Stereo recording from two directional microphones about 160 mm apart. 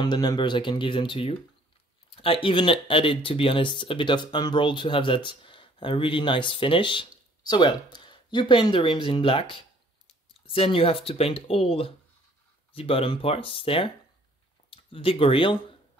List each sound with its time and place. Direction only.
0.0 s speech: 25° left (ahead or behind)